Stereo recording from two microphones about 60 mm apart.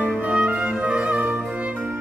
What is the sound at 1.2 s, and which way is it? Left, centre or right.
Music, right.